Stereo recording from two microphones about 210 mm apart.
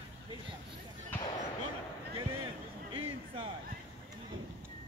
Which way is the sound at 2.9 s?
25° right (ahead or behind).